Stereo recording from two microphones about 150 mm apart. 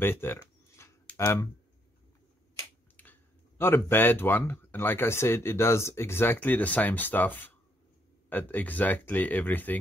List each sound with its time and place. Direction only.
0.0 s a sound: 15° left (ahead or behind)
1.1 s speech: 20° left (ahead or behind)
3.0 s speech: 15° left (ahead or behind)